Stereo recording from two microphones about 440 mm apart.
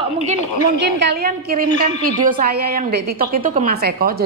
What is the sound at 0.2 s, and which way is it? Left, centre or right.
A woman's voice, centre.